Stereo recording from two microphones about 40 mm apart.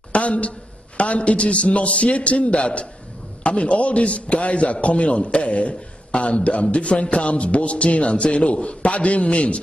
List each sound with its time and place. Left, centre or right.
0.1 s a man's voice: left